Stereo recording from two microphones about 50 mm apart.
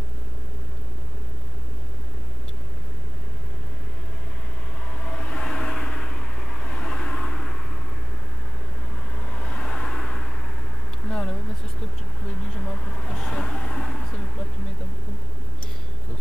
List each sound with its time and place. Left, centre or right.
4.8 s vehicle: centre
9.1 s vehicle: centre
11.1 s a sound: centre
12.3 s vehicle: centre